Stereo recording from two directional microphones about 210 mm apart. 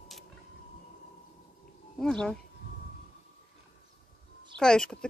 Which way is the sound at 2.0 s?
5° left (ahead or behind).